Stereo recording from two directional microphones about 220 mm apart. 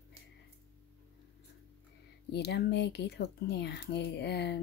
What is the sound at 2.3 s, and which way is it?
Speech, 50° left (ahead or behind).